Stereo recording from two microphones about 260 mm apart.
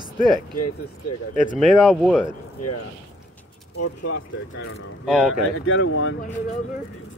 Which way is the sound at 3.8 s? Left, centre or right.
Left.